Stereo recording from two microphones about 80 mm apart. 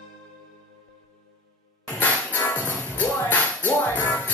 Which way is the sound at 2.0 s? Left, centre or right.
Left.